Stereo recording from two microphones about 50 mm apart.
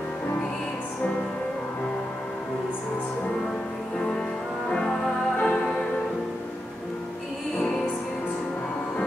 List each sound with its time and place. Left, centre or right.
4.6 s music: centre